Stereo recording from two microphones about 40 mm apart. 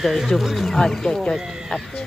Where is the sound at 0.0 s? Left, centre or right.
Centre.